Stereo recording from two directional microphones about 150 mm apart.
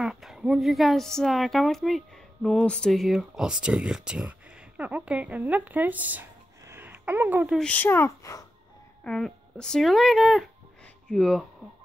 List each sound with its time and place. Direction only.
0.0 s speech: centre (ahead or behind)
6.7 s a sound: 10° right (ahead or behind)
7.5 s speech: 10° left (ahead or behind)
9.0 s speech: 5° left (ahead or behind)